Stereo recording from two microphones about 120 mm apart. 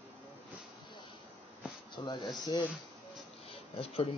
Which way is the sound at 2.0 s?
40° left (ahead or behind).